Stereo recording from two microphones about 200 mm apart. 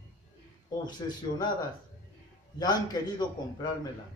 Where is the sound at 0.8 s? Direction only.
20° left (ahead or behind).